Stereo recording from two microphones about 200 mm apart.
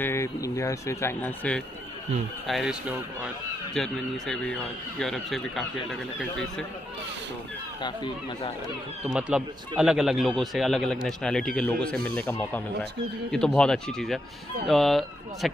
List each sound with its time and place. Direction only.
0.0 s a man's voice: 15° left (ahead or behind)
7.8 s speech: 25° left (ahead or behind)
9.0 s a man's voice: 5° right (ahead or behind)